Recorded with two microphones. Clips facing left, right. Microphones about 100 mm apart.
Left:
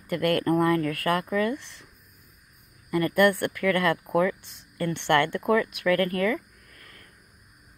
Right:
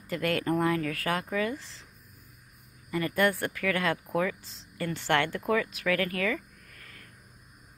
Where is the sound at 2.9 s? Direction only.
55° left (ahead or behind).